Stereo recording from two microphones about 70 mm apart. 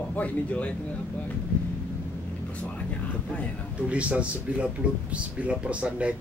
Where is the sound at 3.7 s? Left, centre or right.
Centre.